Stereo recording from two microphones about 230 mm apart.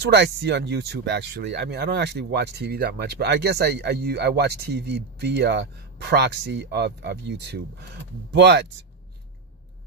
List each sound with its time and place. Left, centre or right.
0.0 s speech: right